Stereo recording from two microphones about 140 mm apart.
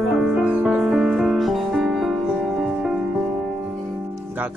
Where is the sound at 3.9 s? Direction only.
15° right (ahead or behind).